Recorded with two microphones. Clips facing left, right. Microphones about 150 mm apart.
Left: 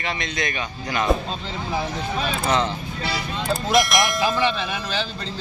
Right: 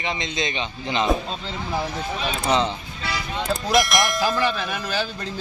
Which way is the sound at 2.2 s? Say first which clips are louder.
Right 1 dB; 20° right (ahead or behind).